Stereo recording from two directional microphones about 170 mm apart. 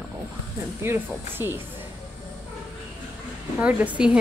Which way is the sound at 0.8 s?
15° right (ahead or behind).